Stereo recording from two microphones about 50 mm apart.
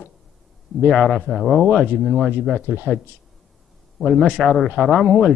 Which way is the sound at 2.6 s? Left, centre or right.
Right.